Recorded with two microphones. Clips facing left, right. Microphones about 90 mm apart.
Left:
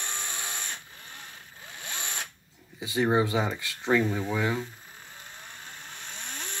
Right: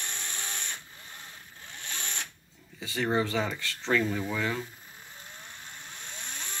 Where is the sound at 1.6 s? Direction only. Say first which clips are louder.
Left 2 dB; 10° left (ahead or behind).